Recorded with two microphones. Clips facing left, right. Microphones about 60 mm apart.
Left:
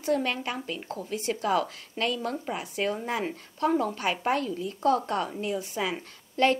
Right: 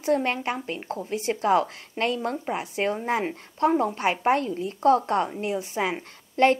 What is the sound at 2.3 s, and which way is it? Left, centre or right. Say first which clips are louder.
A woman's voice: right 3 dB; right.